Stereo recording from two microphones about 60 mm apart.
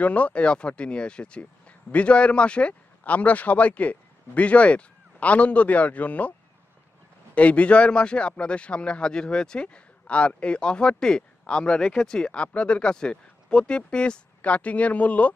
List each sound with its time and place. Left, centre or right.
0.0 s speech: left
7.3 s speech: left